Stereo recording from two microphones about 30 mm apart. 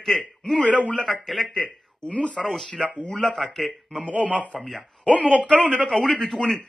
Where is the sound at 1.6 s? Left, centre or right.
Left.